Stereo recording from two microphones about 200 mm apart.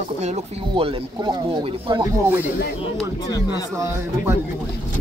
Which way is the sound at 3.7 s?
15° right (ahead or behind).